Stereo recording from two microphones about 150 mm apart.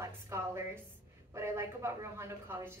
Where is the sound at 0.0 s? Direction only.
20° right (ahead or behind).